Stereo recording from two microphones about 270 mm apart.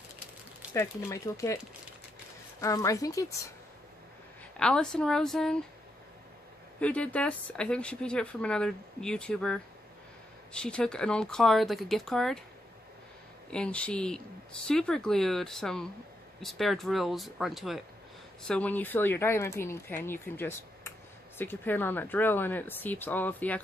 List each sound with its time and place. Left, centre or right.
0.7 s speech: centre
2.6 s speech: centre
4.6 s speech: centre
6.8 s speech: centre
13.5 s speech: centre